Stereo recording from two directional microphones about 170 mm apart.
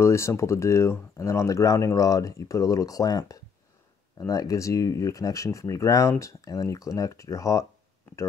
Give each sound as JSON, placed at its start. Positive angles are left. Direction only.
{"t": 0.0, "sound": "speech", "side_deg": 15}